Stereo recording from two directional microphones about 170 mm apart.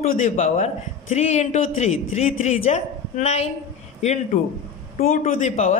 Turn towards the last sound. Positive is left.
turn(degrees=45)  # may be behind; listen again after turning